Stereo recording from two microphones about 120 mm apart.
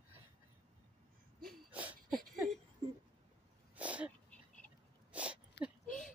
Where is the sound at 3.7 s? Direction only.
10° right (ahead or behind).